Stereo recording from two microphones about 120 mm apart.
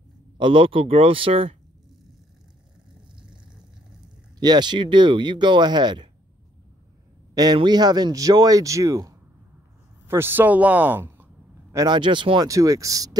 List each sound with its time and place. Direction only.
0.4 s speech: 45° right (ahead or behind)
4.4 s speech: 35° right (ahead or behind)
7.3 s speech: 35° right (ahead or behind); by 11.2 s 15° right (ahead or behind)
11.7 s speech: 35° right (ahead or behind)
12.4 s speech: 25° right (ahead or behind)